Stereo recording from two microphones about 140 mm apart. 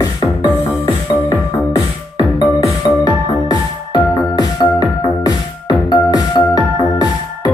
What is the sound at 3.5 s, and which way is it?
Music, 30° left (ahead or behind).